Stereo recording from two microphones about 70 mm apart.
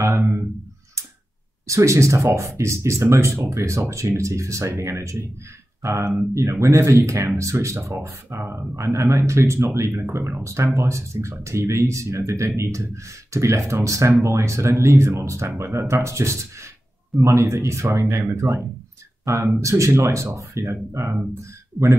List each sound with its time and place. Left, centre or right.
1.7 s speech: right